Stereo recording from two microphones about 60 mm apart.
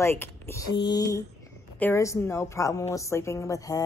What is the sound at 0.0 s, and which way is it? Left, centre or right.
Speech, left.